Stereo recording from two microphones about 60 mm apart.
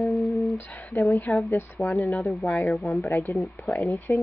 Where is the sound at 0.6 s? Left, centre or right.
Left.